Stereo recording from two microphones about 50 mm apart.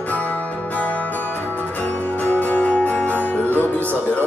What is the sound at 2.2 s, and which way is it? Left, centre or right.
Music, left.